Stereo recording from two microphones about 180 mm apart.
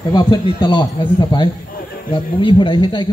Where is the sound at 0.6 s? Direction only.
25° left (ahead or behind).